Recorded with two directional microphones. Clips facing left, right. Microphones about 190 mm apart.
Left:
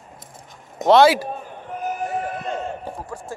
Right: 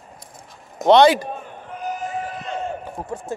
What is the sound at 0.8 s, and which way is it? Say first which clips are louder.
Speech: right 1 dB; 5° left (ahead or behind).